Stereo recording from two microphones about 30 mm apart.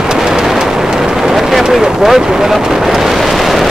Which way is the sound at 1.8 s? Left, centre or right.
Centre.